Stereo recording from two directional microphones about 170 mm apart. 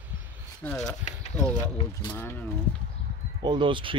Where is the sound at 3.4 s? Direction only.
25° right (ahead or behind).